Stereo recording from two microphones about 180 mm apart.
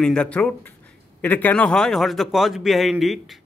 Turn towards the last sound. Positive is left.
turn(degrees=0)  # may be behind; listen again after turning